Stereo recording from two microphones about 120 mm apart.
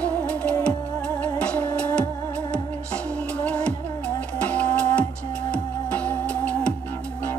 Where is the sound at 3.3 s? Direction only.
10° left (ahead or behind).